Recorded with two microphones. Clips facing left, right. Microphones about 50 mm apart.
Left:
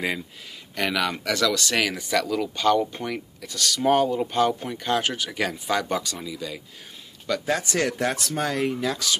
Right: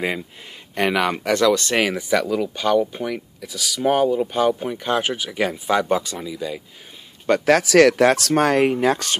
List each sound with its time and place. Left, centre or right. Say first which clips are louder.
0.7 s speech: right 5 dB; right; by 6.6 s centre
7.4 s speech: right 12 dB; right